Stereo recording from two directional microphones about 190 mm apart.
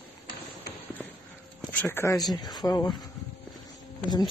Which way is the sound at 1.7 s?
10° left (ahead or behind).